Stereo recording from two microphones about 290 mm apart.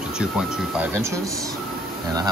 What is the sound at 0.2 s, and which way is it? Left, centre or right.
Speech, centre.